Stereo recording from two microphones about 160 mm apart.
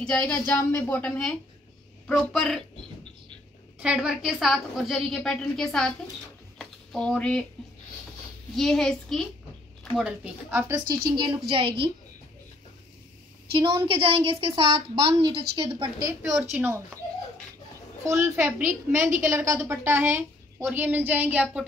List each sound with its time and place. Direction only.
0.0 s a woman's voice: 5° left (ahead or behind)
3.8 s a woman's voice: 5° right (ahead or behind)
6.6 s a sound: 5° left (ahead or behind)
8.5 s a woman's voice: centre (ahead or behind)
11.1 s a woman's voice: 30° right (ahead or behind)
13.5 s a woman's voice: 35° right (ahead or behind)
16.5 s a woman's voice: 10° right (ahead or behind)
18.0 s a woman's voice: 15° right (ahead or behind)